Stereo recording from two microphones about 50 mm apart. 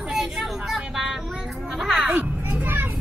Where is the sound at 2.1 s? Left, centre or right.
Right.